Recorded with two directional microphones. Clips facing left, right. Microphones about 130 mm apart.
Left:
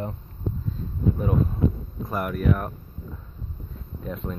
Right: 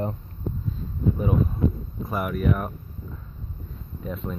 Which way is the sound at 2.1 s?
5° right (ahead or behind).